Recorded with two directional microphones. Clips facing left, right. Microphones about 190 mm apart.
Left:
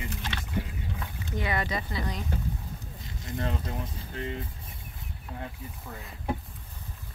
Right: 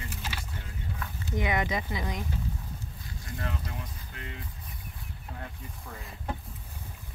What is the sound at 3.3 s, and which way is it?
Speech, 25° left (ahead or behind).